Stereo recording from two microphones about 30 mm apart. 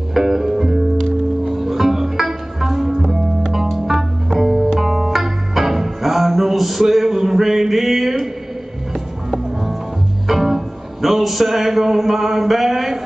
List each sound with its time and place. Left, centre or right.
0.2 s music: centre
10.2 s speech: centre